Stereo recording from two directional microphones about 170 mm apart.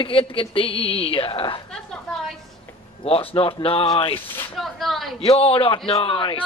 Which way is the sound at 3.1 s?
35° left (ahead or behind).